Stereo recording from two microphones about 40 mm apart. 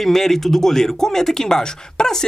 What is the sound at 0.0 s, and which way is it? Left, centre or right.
Speech, centre.